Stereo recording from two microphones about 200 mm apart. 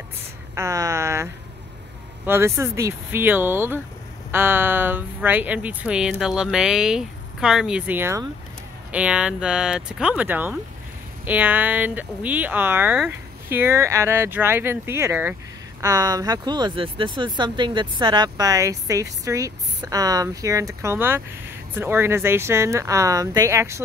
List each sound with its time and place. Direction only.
0.6 s speech: 15° right (ahead or behind)